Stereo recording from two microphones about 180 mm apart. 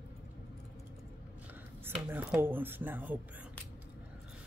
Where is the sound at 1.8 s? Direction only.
10° right (ahead or behind).